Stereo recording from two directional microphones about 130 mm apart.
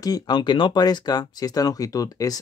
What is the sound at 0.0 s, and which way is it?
Speech, 30° left (ahead or behind).